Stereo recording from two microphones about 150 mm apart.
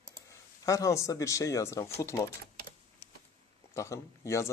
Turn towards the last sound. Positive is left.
turn(degrees=20)  # may be behind; listen again after turning